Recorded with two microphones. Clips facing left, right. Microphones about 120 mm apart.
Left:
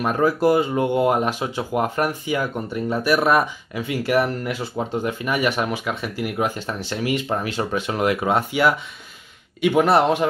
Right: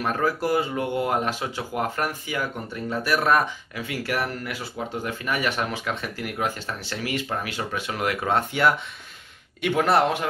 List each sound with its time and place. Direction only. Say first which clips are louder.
0.0 s speech: left 6 dB; 20° left (ahead or behind)
9.8 s speech: left 4 dB; 15° left (ahead or behind)